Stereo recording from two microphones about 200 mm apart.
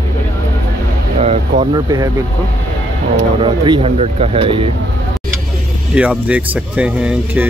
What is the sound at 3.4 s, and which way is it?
Speech, 30° right (ahead or behind).